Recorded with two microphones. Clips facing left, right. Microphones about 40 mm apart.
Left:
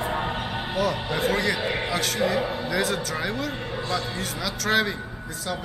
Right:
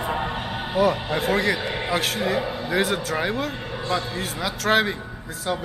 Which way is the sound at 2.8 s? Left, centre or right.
Centre.